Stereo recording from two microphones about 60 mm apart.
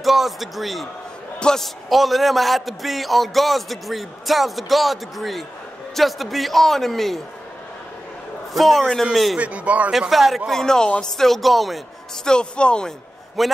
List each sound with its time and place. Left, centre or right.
0.0 s a man's voice: centre
1.4 s a man's voice: centre
8.5 s a man's voice: centre
9.4 s a man's voice: right
9.9 s a man's voice: centre
10.5 s a man's voice: centre
12.3 s speech: centre
13.4 s a man's voice: centre